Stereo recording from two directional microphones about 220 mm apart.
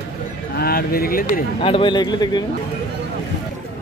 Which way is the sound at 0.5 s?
45° left (ahead or behind).